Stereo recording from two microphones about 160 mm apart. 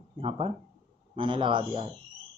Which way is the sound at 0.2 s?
35° right (ahead or behind).